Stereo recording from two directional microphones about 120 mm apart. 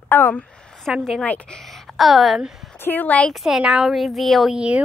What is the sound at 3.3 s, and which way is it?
A woman's voice, 5° right (ahead or behind).